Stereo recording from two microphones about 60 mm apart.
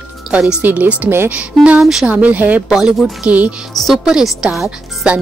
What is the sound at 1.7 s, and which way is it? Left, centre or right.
Speech, centre.